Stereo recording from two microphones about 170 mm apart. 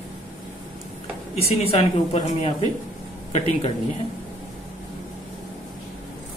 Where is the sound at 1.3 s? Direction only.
35° left (ahead or behind).